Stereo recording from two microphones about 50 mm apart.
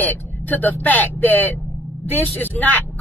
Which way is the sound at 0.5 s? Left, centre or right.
Left.